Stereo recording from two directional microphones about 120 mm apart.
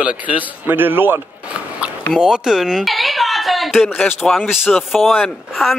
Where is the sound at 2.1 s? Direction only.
5° right (ahead or behind).